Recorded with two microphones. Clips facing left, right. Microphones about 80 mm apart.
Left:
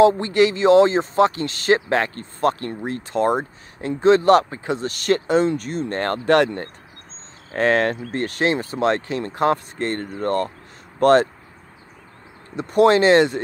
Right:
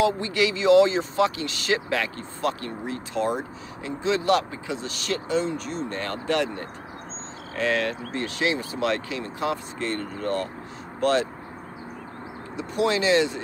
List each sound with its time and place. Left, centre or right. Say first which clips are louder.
0.0 s speech: left 8 dB; left
7.5 s speech: left 6 dB; left
12.5 s speech: left 9 dB; left